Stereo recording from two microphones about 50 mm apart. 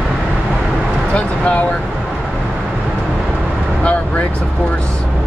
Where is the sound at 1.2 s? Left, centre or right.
Left.